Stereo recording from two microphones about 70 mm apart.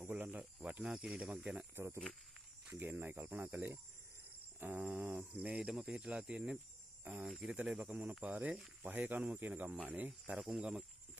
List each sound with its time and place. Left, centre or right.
0.1 s speech: right
2.7 s speech: right
4.6 s cricket: right
4.8 s speech: centre
8.2 s speech: right
10.3 s speech: centre